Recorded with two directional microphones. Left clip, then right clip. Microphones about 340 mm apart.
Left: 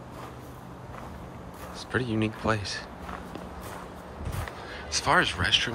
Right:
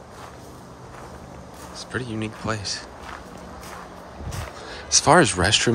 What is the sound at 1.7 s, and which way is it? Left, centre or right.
Speech, centre.